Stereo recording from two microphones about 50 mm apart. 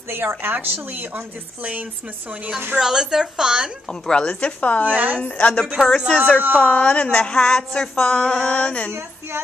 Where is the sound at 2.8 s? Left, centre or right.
Centre.